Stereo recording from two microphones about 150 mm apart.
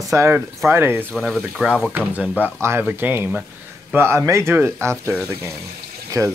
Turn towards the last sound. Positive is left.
turn(degrees=-20)  # may be behind; listen again after turning